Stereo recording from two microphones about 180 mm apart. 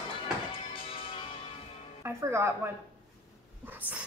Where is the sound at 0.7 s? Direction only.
30° left (ahead or behind).